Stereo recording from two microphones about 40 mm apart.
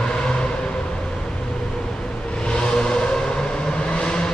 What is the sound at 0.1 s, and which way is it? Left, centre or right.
Vehicle, left.